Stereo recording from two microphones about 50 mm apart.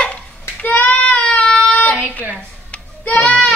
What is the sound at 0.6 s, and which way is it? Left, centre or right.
Child singing, left.